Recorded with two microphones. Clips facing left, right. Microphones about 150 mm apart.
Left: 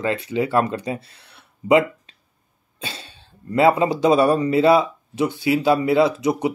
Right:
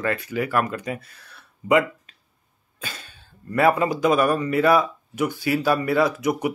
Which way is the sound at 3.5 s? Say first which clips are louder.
Left 3 dB; 25° left (ahead or behind).